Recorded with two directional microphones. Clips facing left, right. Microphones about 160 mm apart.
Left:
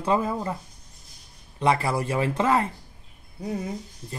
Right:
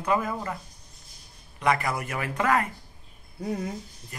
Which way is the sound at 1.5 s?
30° left (ahead or behind).